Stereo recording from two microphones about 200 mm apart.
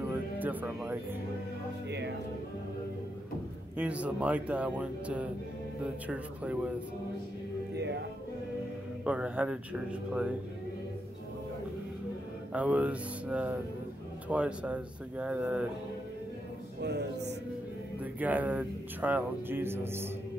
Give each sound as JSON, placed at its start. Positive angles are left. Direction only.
{"t": 0.4, "sound": "speech", "side_deg": -10}
{"t": 1.9, "sound": "speech", "side_deg": -60}
{"t": 3.7, "sound": "speech", "side_deg": -5}
{"t": 7.7, "sound": "music", "side_deg": -60}
{"t": 9.0, "sound": "speech", "side_deg": -5}
{"t": 12.5, "sound": "speech", "side_deg": -5}
{"t": 16.8, "sound": "speech", "side_deg": -55}
{"t": 18.2, "sound": "speech", "side_deg": -10}